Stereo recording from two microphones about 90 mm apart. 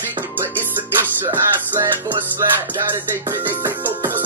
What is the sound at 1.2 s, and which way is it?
Music, 30° right (ahead or behind).